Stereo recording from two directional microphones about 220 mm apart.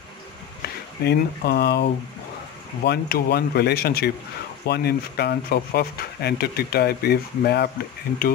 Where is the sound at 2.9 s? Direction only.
45° left (ahead or behind).